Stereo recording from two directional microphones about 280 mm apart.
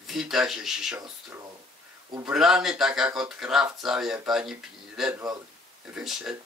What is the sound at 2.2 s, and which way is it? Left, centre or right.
Speech, centre.